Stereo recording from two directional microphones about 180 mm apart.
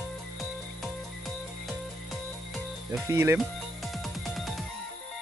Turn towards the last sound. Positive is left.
turn(degrees=0)  # may be behind; listen again after turning